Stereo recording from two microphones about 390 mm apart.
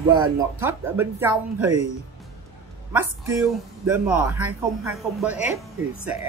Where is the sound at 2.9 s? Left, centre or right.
Centre.